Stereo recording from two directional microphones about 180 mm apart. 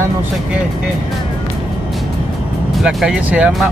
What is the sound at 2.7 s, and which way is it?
Speech, centre (ahead or behind).